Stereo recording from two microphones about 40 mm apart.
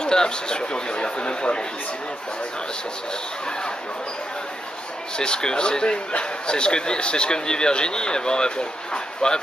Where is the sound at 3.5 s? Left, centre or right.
Left.